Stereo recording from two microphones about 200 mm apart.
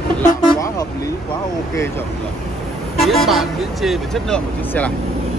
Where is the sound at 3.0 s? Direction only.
Centre (ahead or behind).